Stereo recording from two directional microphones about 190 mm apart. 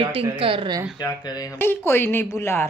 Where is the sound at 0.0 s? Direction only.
30° right (ahead or behind).